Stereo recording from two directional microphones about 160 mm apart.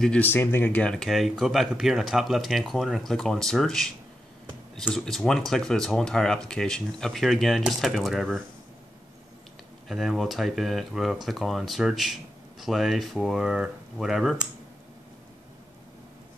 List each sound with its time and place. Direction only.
0.0 s speech: 10° left (ahead or behind)
9.8 s speech: centre (ahead or behind)